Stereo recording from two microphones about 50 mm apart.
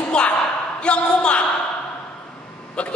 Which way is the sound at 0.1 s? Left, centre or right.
Centre.